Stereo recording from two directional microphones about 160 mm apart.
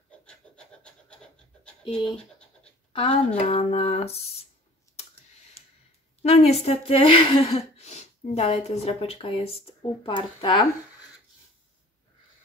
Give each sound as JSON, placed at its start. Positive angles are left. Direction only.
{"t": 0.3, "sound": "pant", "side_deg": 5}
{"t": 2.1, "sound": "scratch", "side_deg": 5}
{"t": 2.9, "sound": "a sound", "side_deg": 35}
{"t": 3.3, "sound": "speech", "side_deg": 40}
{"t": 5.0, "sound": "clicking", "side_deg": 40}
{"t": 6.2, "sound": "speech", "side_deg": 40}